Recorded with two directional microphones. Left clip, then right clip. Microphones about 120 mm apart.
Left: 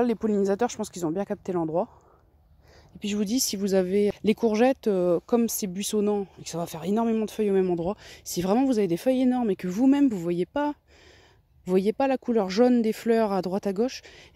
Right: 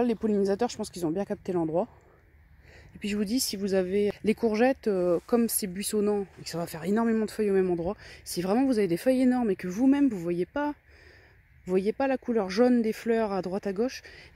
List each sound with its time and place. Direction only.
0.0 s speech: 20° left (ahead or behind)
3.2 s speech: 35° left (ahead or behind)
5.3 s speech: 20° left (ahead or behind)
6.8 s speech: 10° left (ahead or behind)
7.3 s speech: 30° left (ahead or behind)